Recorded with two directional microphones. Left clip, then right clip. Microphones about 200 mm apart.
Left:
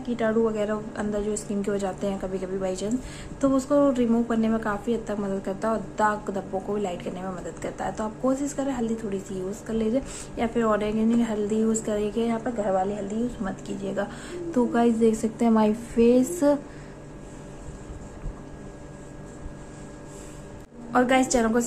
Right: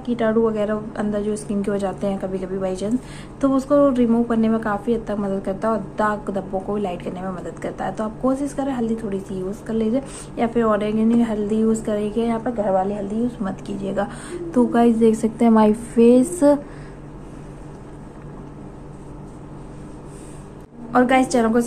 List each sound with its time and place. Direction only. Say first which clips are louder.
0.0 s a woman's voice: right 5 dB; 5° left (ahead or behind)
20.9 s a woman's voice: right 5 dB; 5° left (ahead or behind)